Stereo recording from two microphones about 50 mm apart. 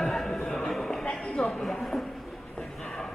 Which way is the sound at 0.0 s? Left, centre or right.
Centre.